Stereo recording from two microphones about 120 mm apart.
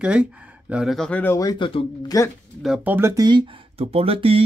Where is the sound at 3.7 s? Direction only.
55° right (ahead or behind).